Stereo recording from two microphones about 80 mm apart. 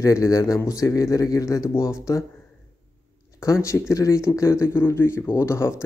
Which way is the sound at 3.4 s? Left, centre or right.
Left.